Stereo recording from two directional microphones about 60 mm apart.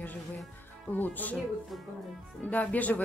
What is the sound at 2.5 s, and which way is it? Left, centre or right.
Speech, left.